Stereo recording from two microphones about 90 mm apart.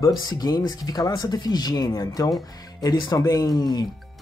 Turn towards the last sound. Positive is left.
turn(degrees=50)  # may be behind; listen again after turning